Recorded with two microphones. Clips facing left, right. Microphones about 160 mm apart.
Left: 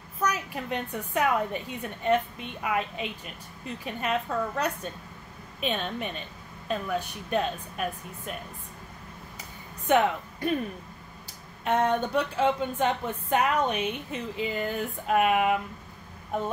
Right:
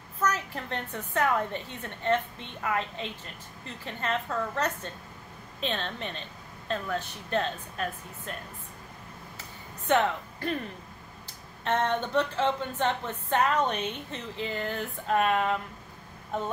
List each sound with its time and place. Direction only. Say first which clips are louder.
0.2 s a woman's voice: even; 10° left (ahead or behind)
9.8 s speech: left 2 dB; 10° left (ahead or behind)
11.6 s a woman's voice: left 3 dB; 10° left (ahead or behind)